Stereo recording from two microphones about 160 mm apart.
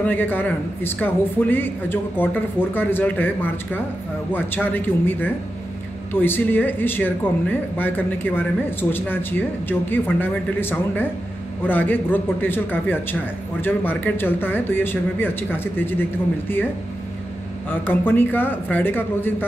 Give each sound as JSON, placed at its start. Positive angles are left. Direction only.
{"t": 0.0, "sound": "speech", "side_deg": 10}
{"t": 17.6, "sound": "speech", "side_deg": 15}